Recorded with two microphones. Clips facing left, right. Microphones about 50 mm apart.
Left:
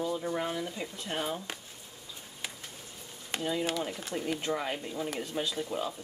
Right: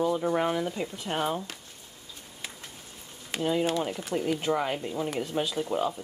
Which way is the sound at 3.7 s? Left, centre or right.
Centre.